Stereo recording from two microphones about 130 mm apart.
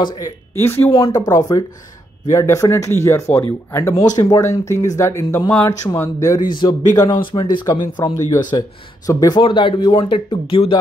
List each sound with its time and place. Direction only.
0.0 s speech: 30° left (ahead or behind)
0.6 s speech: 15° left (ahead or behind)
0.9 s speech: 30° left (ahead or behind)
6.6 s speech: 35° left (ahead or behind)
9.4 s speech: 40° left (ahead or behind)